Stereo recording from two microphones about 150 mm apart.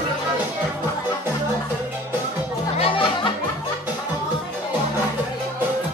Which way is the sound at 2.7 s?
35° left (ahead or behind).